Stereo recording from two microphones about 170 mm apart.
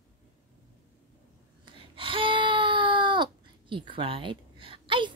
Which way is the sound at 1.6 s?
30° right (ahead or behind).